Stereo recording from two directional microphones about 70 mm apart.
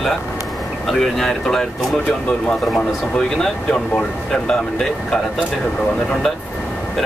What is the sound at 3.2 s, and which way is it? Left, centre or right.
Speech, centre.